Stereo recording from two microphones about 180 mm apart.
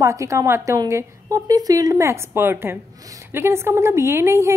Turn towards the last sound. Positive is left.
turn(degrees=-15)  # may be behind; listen again after turning